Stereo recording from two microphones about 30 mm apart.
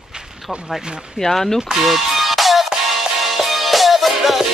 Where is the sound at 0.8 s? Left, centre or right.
Right.